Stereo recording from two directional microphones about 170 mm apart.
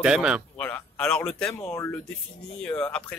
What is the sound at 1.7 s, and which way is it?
Speech, 15° left (ahead or behind).